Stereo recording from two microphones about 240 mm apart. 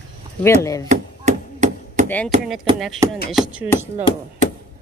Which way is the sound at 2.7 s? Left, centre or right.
Centre.